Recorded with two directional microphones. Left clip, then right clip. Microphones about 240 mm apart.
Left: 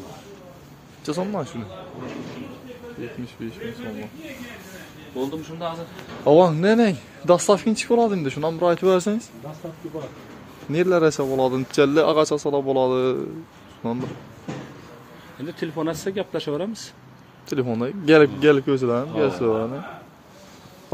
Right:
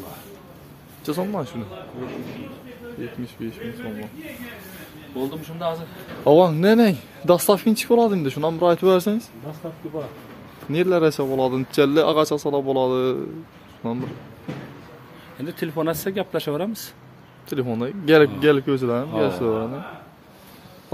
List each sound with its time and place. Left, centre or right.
1.0 s speech: centre
5.1 s speech: right
6.2 s speech: centre
10.7 s speech: centre
15.4 s speech: right
17.5 s a man's voice: centre